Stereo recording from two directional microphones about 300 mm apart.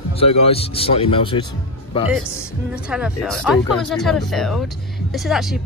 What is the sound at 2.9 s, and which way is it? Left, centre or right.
Speech, centre.